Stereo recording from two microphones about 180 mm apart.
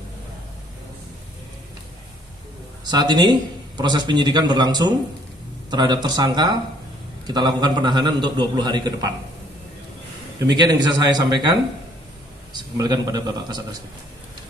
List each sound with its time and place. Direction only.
2.8 s a man's voice: 25° right (ahead or behind)
10.4 s a man's voice: 25° right (ahead or behind)
12.5 s a man's voice: 25° right (ahead or behind)